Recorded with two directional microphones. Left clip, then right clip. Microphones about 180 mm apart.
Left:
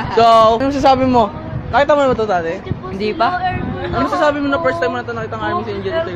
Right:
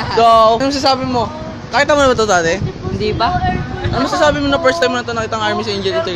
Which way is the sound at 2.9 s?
5° left (ahead or behind).